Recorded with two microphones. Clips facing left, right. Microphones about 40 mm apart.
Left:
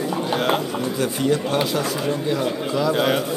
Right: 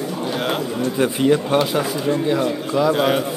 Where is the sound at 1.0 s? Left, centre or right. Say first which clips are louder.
Right 5 dB; centre.